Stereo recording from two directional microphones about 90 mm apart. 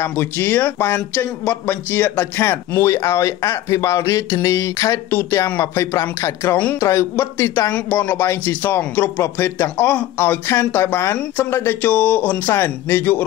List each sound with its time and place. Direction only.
0.0 s speech: 25° left (ahead or behind)